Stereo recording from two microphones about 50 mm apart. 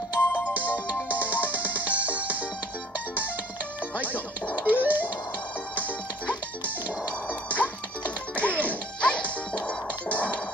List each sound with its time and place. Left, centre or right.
0.2 s music: left
0.5 s music: right
3.9 s music: right
6.6 s music: right
8.4 s music: left